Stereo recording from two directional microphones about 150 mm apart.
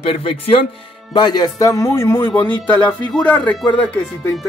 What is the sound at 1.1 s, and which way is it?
Speech, 30° left (ahead or behind).